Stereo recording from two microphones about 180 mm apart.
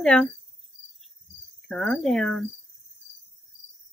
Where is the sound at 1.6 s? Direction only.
Centre (ahead or behind).